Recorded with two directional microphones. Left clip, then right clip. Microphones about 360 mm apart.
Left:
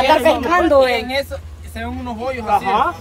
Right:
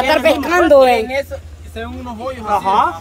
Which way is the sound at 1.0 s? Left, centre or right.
Centre.